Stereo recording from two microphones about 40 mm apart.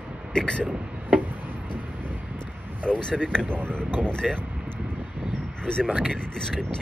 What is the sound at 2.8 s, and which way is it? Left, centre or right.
Speech, left.